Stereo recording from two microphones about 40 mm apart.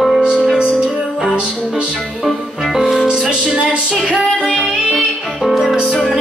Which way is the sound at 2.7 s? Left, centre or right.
Centre.